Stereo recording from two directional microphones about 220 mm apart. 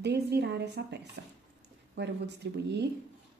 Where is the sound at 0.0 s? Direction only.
50° right (ahead or behind).